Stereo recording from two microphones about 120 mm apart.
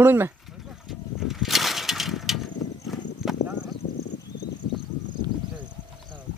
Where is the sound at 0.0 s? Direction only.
20° right (ahead or behind).